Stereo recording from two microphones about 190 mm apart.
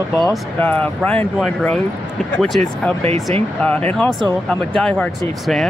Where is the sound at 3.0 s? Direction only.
30° right (ahead or behind).